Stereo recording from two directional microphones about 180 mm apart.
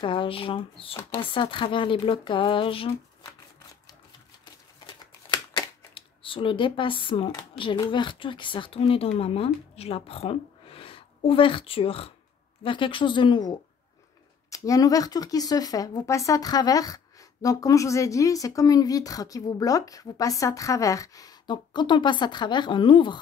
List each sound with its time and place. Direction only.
0.0 s speech: 30° left (ahead or behind)
5.3 s speech: 25° left (ahead or behind)